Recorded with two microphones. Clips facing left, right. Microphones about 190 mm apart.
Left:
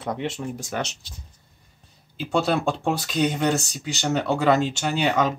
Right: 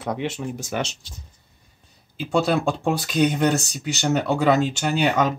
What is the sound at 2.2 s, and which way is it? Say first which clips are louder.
Speech: right 2 dB; 5° right (ahead or behind).